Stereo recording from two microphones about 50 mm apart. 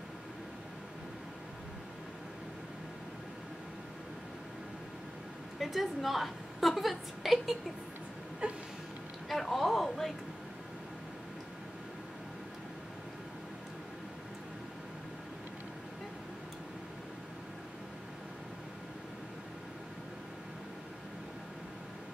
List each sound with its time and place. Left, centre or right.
5.6 s a woman's voice: centre
8.4 s a sound: right
9.3 s a woman's voice: centre